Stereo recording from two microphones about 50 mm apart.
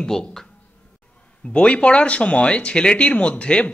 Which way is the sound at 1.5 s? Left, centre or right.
Left.